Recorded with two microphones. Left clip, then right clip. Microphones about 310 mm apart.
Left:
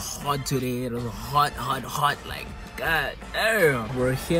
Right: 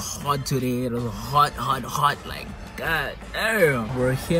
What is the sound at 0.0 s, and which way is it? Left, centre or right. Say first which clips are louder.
Speech: right 2 dB; centre.